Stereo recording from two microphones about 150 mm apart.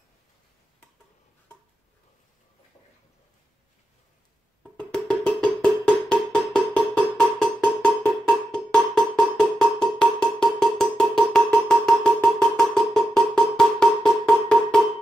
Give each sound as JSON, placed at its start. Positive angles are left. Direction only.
{"t": 4.7, "sound": "music", "side_deg": 5}